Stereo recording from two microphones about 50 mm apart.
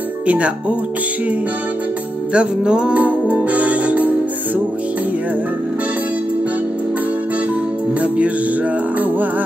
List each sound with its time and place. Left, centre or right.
0.3 s music: right
2.3 s music: centre
3.0 s music: right